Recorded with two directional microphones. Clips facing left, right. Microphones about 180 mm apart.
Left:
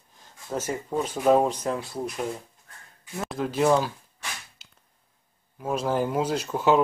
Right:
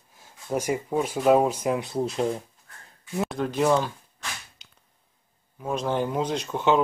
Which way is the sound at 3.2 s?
Centre (ahead or behind).